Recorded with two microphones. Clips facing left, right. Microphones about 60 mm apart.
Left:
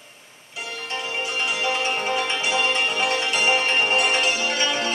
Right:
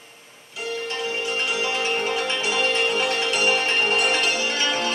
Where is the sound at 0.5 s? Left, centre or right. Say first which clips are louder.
Right 3 dB; left.